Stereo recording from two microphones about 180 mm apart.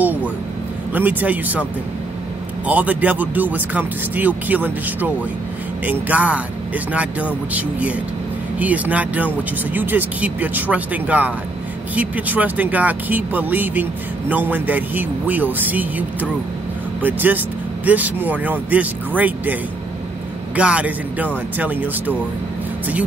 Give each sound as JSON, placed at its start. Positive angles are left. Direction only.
{"t": 0.0, "sound": "vehicle", "side_deg": -10}
{"t": 0.9, "sound": "speech", "side_deg": -10}
{"t": 20.5, "sound": "speech", "side_deg": -5}